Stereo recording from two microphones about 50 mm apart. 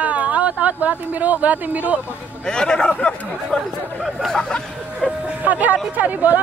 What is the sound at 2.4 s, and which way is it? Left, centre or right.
Speech, centre.